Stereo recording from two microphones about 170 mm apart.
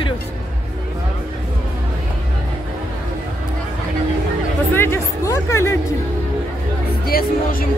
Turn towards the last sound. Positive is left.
turn(degrees=60)  # may be behind; listen again after turning